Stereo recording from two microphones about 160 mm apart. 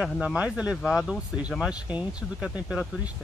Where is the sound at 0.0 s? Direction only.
5° right (ahead or behind).